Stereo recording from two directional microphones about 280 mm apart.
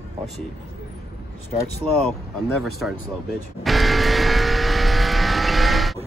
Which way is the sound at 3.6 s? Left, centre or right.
Centre.